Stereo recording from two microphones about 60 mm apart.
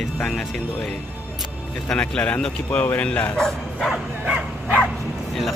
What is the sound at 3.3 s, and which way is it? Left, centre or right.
Speech, centre.